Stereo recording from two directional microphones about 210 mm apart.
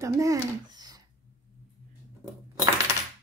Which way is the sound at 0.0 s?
15° right (ahead or behind).